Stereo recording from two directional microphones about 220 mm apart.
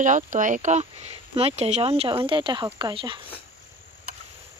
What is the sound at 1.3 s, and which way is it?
Speech, 30° right (ahead or behind).